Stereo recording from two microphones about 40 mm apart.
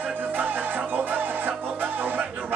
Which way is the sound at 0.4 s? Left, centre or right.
Right.